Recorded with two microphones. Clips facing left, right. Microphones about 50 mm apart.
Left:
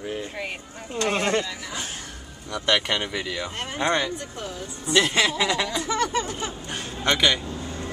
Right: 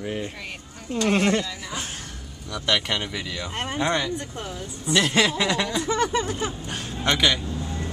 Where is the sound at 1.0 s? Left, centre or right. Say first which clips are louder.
Right 2 dB; centre.